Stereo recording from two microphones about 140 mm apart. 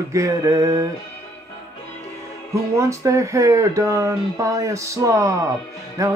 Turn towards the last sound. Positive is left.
turn(degrees=-25)  # may be behind; listen again after turning